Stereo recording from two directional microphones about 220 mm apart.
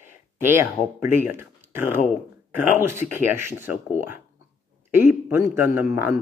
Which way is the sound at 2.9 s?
10° right (ahead or behind).